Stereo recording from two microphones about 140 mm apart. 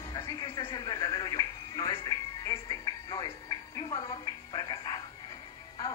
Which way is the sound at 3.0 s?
35° left (ahead or behind).